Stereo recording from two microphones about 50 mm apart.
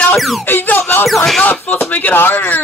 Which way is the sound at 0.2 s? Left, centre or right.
Centre.